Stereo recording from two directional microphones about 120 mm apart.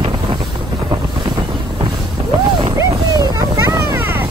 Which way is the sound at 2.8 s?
30° right (ahead or behind).